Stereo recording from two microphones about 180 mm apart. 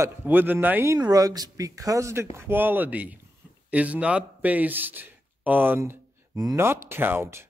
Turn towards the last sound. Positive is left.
turn(degrees=-15)  # may be behind; listen again after turning